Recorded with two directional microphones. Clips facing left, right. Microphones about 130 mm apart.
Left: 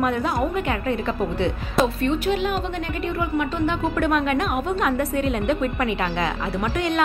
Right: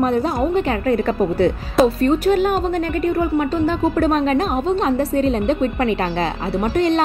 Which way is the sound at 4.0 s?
35° right (ahead or behind).